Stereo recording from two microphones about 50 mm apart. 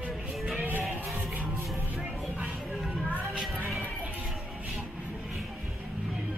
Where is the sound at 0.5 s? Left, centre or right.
Right.